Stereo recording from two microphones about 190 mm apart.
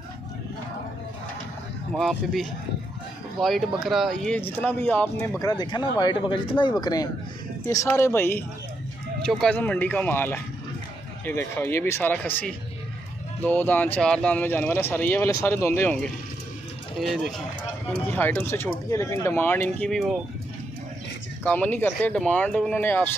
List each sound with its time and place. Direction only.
2.0 s speech: centre (ahead or behind)
5.4 s speech: 20° left (ahead or behind); by 20.2 s centre (ahead or behind)
21.5 s speech: 10° left (ahead or behind)